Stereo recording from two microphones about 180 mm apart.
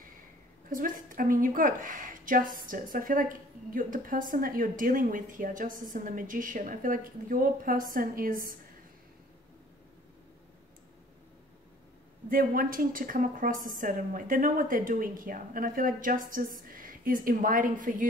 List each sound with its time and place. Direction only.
0.7 s a woman's voice: 50° right (ahead or behind)
12.3 s a woman's voice: 50° right (ahead or behind)